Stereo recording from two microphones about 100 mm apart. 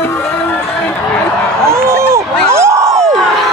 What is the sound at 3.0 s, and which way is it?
Crowd, 5° left (ahead or behind).